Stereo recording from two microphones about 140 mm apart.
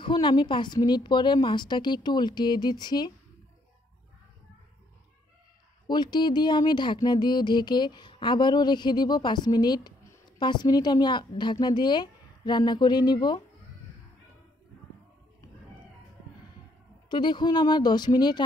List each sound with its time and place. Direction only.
0.0 s speech: 35° left (ahead or behind)
5.9 s speech: 30° left (ahead or behind)
17.1 s speech: 35° left (ahead or behind)